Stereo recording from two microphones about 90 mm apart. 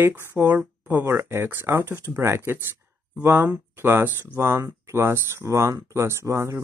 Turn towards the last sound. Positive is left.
turn(degrees=-30)  # may be behind; listen again after turning